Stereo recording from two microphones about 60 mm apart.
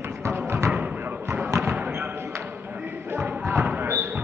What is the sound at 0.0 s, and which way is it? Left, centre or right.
Music, right.